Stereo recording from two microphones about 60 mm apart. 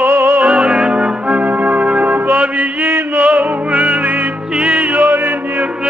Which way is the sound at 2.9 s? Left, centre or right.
Right.